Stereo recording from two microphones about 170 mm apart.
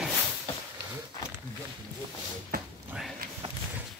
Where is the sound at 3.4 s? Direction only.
35° right (ahead or behind).